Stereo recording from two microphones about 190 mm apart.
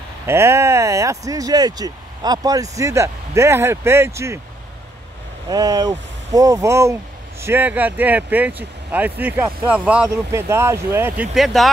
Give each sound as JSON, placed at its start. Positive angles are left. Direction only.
{"t": 0.3, "sound": "speech", "side_deg": -15}
{"t": 5.5, "sound": "speech", "side_deg": -20}